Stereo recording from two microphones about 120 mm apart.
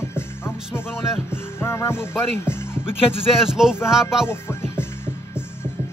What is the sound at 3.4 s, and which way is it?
Music, 5° right (ahead or behind).